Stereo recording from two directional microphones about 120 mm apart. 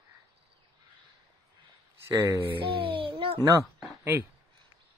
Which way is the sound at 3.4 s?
25° right (ahead or behind).